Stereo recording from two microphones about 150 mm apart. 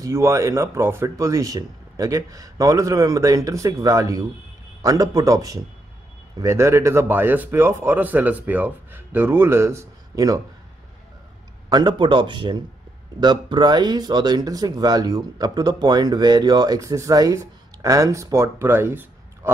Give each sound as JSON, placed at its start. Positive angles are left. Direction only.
{"t": 0.0, "sound": "a man's voice", "side_deg": -20}
{"t": 11.7, "sound": "speech", "side_deg": -30}